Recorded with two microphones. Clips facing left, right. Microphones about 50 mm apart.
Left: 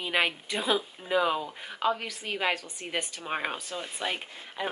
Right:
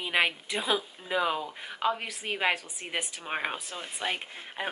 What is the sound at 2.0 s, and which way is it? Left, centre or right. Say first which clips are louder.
A woman's voice: right 1 dB; right.